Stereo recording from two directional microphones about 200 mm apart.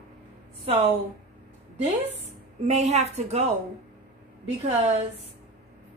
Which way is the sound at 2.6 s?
35° right (ahead or behind).